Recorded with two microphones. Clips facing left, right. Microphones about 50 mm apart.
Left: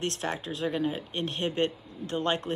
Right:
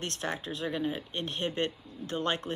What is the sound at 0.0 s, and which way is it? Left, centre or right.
Speech, left.